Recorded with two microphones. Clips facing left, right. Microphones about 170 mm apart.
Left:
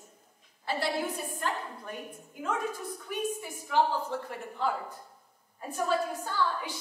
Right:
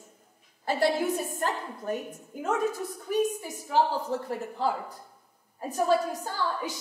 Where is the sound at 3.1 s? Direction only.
40° right (ahead or behind).